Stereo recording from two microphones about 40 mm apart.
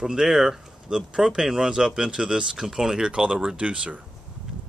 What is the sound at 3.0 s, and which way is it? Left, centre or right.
Speech, right.